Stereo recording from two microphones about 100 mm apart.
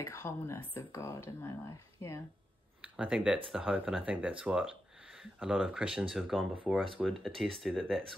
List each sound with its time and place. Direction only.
0.0 s speech: 30° left (ahead or behind)
2.8 s speech: 10° right (ahead or behind)